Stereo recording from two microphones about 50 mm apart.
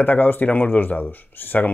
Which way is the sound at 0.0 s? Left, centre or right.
Left.